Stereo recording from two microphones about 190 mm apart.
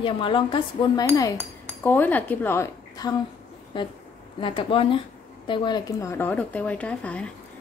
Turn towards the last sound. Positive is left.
turn(degrees=5)  # may be behind; listen again after turning